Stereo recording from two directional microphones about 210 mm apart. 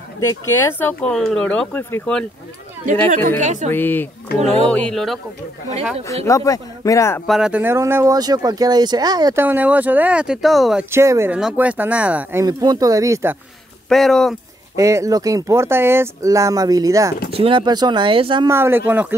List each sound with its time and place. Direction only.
0.2 s speech: 10° left (ahead or behind)
3.3 s a woman's voice: 35° right (ahead or behind)
3.7 s speech: 10° left (ahead or behind)
6.2 s speech: 15° left (ahead or behind)
7.2 s speech: 5° right (ahead or behind)
13.8 s speech: centre (ahead or behind)
14.8 s speech: 15° right (ahead or behind)
18.5 s speech: 10° right (ahead or behind)